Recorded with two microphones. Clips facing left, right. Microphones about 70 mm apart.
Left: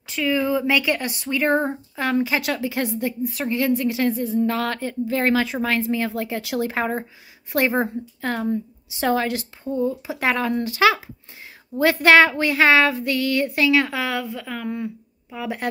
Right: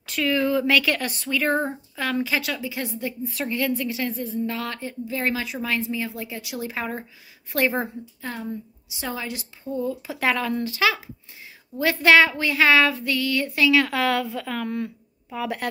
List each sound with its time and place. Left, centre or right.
0.0 s speech: centre
1.3 s a sound: left
2.5 s a woman's voice: left
3.2 s a woman's voice: centre; by 4.1 s left
4.1 s a woman's voice: left
4.5 s a woman's voice: left
6.7 s a sound: left
8.2 s a woman's voice: left
9.7 s a sound: left
10.8 s a woman's voice: left
11.7 s a sound: left
13.8 s speech: centre